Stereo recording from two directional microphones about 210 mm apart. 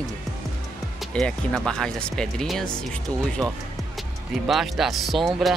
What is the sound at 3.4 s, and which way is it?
Speech, 15° right (ahead or behind).